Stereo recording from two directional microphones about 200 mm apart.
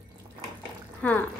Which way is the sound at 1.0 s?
10° left (ahead or behind).